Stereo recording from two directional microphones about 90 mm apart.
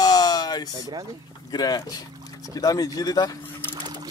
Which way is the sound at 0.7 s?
45° right (ahead or behind).